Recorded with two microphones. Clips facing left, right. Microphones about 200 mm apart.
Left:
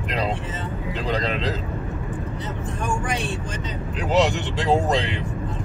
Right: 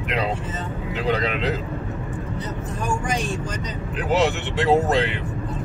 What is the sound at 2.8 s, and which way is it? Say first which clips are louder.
Speech: right 1 dB; 40° right (ahead or behind).